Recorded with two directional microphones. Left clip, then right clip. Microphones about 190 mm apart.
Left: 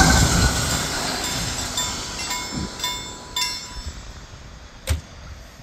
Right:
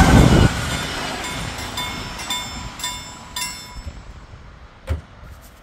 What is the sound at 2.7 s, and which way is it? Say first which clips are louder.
Train: left 1 dB; 75° right (ahead or behind).